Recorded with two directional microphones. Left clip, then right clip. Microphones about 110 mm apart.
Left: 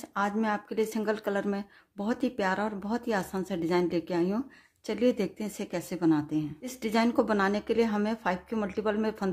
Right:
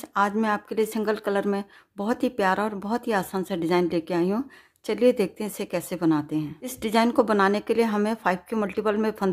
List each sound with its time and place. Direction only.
0.1 s speech: 30° right (ahead or behind)